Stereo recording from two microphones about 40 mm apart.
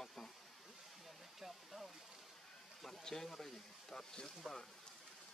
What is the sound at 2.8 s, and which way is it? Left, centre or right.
Speech, centre.